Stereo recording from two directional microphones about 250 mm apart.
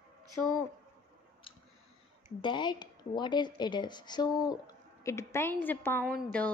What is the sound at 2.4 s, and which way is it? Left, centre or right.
Speech, centre.